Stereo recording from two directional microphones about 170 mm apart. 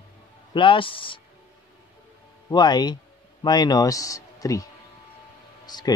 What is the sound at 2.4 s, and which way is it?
Speech, 25° left (ahead or behind).